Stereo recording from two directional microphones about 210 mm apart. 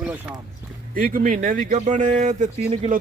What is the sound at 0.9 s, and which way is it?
Speech, 40° right (ahead or behind).